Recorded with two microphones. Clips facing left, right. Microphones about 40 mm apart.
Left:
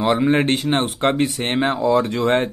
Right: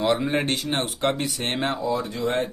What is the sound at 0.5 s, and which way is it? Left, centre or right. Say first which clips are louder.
Speech: left 6 dB; left.